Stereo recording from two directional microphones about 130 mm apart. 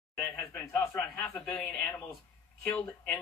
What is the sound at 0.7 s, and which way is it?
Speech, 20° left (ahead or behind).